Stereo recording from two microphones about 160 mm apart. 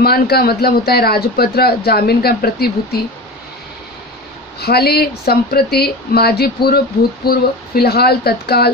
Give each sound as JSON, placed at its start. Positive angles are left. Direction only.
{"t": 0.0, "sound": "a man's voice", "side_deg": 75}
{"t": 4.6, "sound": "a man's voice", "side_deg": 80}